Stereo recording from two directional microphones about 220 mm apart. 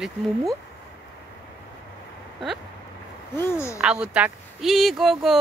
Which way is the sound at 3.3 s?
10° left (ahead or behind).